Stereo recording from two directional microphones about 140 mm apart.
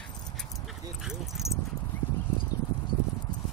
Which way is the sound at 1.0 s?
Centre (ahead or behind).